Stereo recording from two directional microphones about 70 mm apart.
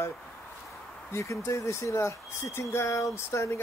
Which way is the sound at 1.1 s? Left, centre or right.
Left.